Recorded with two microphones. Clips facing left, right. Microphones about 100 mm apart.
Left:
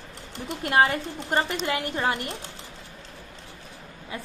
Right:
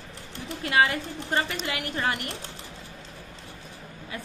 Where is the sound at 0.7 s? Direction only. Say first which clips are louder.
Left 2 dB; 20° left (ahead or behind).